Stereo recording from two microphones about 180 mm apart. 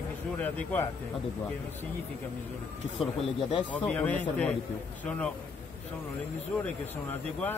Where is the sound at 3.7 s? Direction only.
10° left (ahead or behind).